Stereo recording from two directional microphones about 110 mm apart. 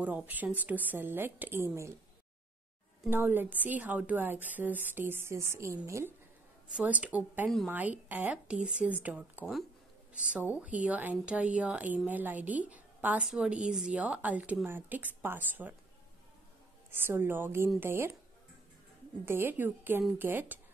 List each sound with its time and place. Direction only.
0.0 s a woman's voice: 15° right (ahead or behind)
3.1 s a woman's voice: 20° right (ahead or behind)
6.7 s a woman's voice: 10° right (ahead or behind)
16.9 s a woman's voice: 20° right (ahead or behind)
19.2 s a woman's voice: 20° right (ahead or behind)